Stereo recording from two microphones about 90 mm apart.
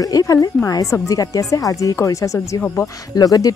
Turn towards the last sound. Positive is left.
turn(degrees=45)  # may be behind; listen again after turning